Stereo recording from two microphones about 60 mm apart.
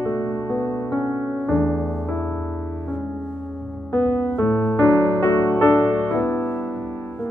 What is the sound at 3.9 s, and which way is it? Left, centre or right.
Music, left.